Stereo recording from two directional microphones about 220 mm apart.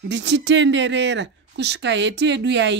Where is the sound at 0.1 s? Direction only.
50° right (ahead or behind).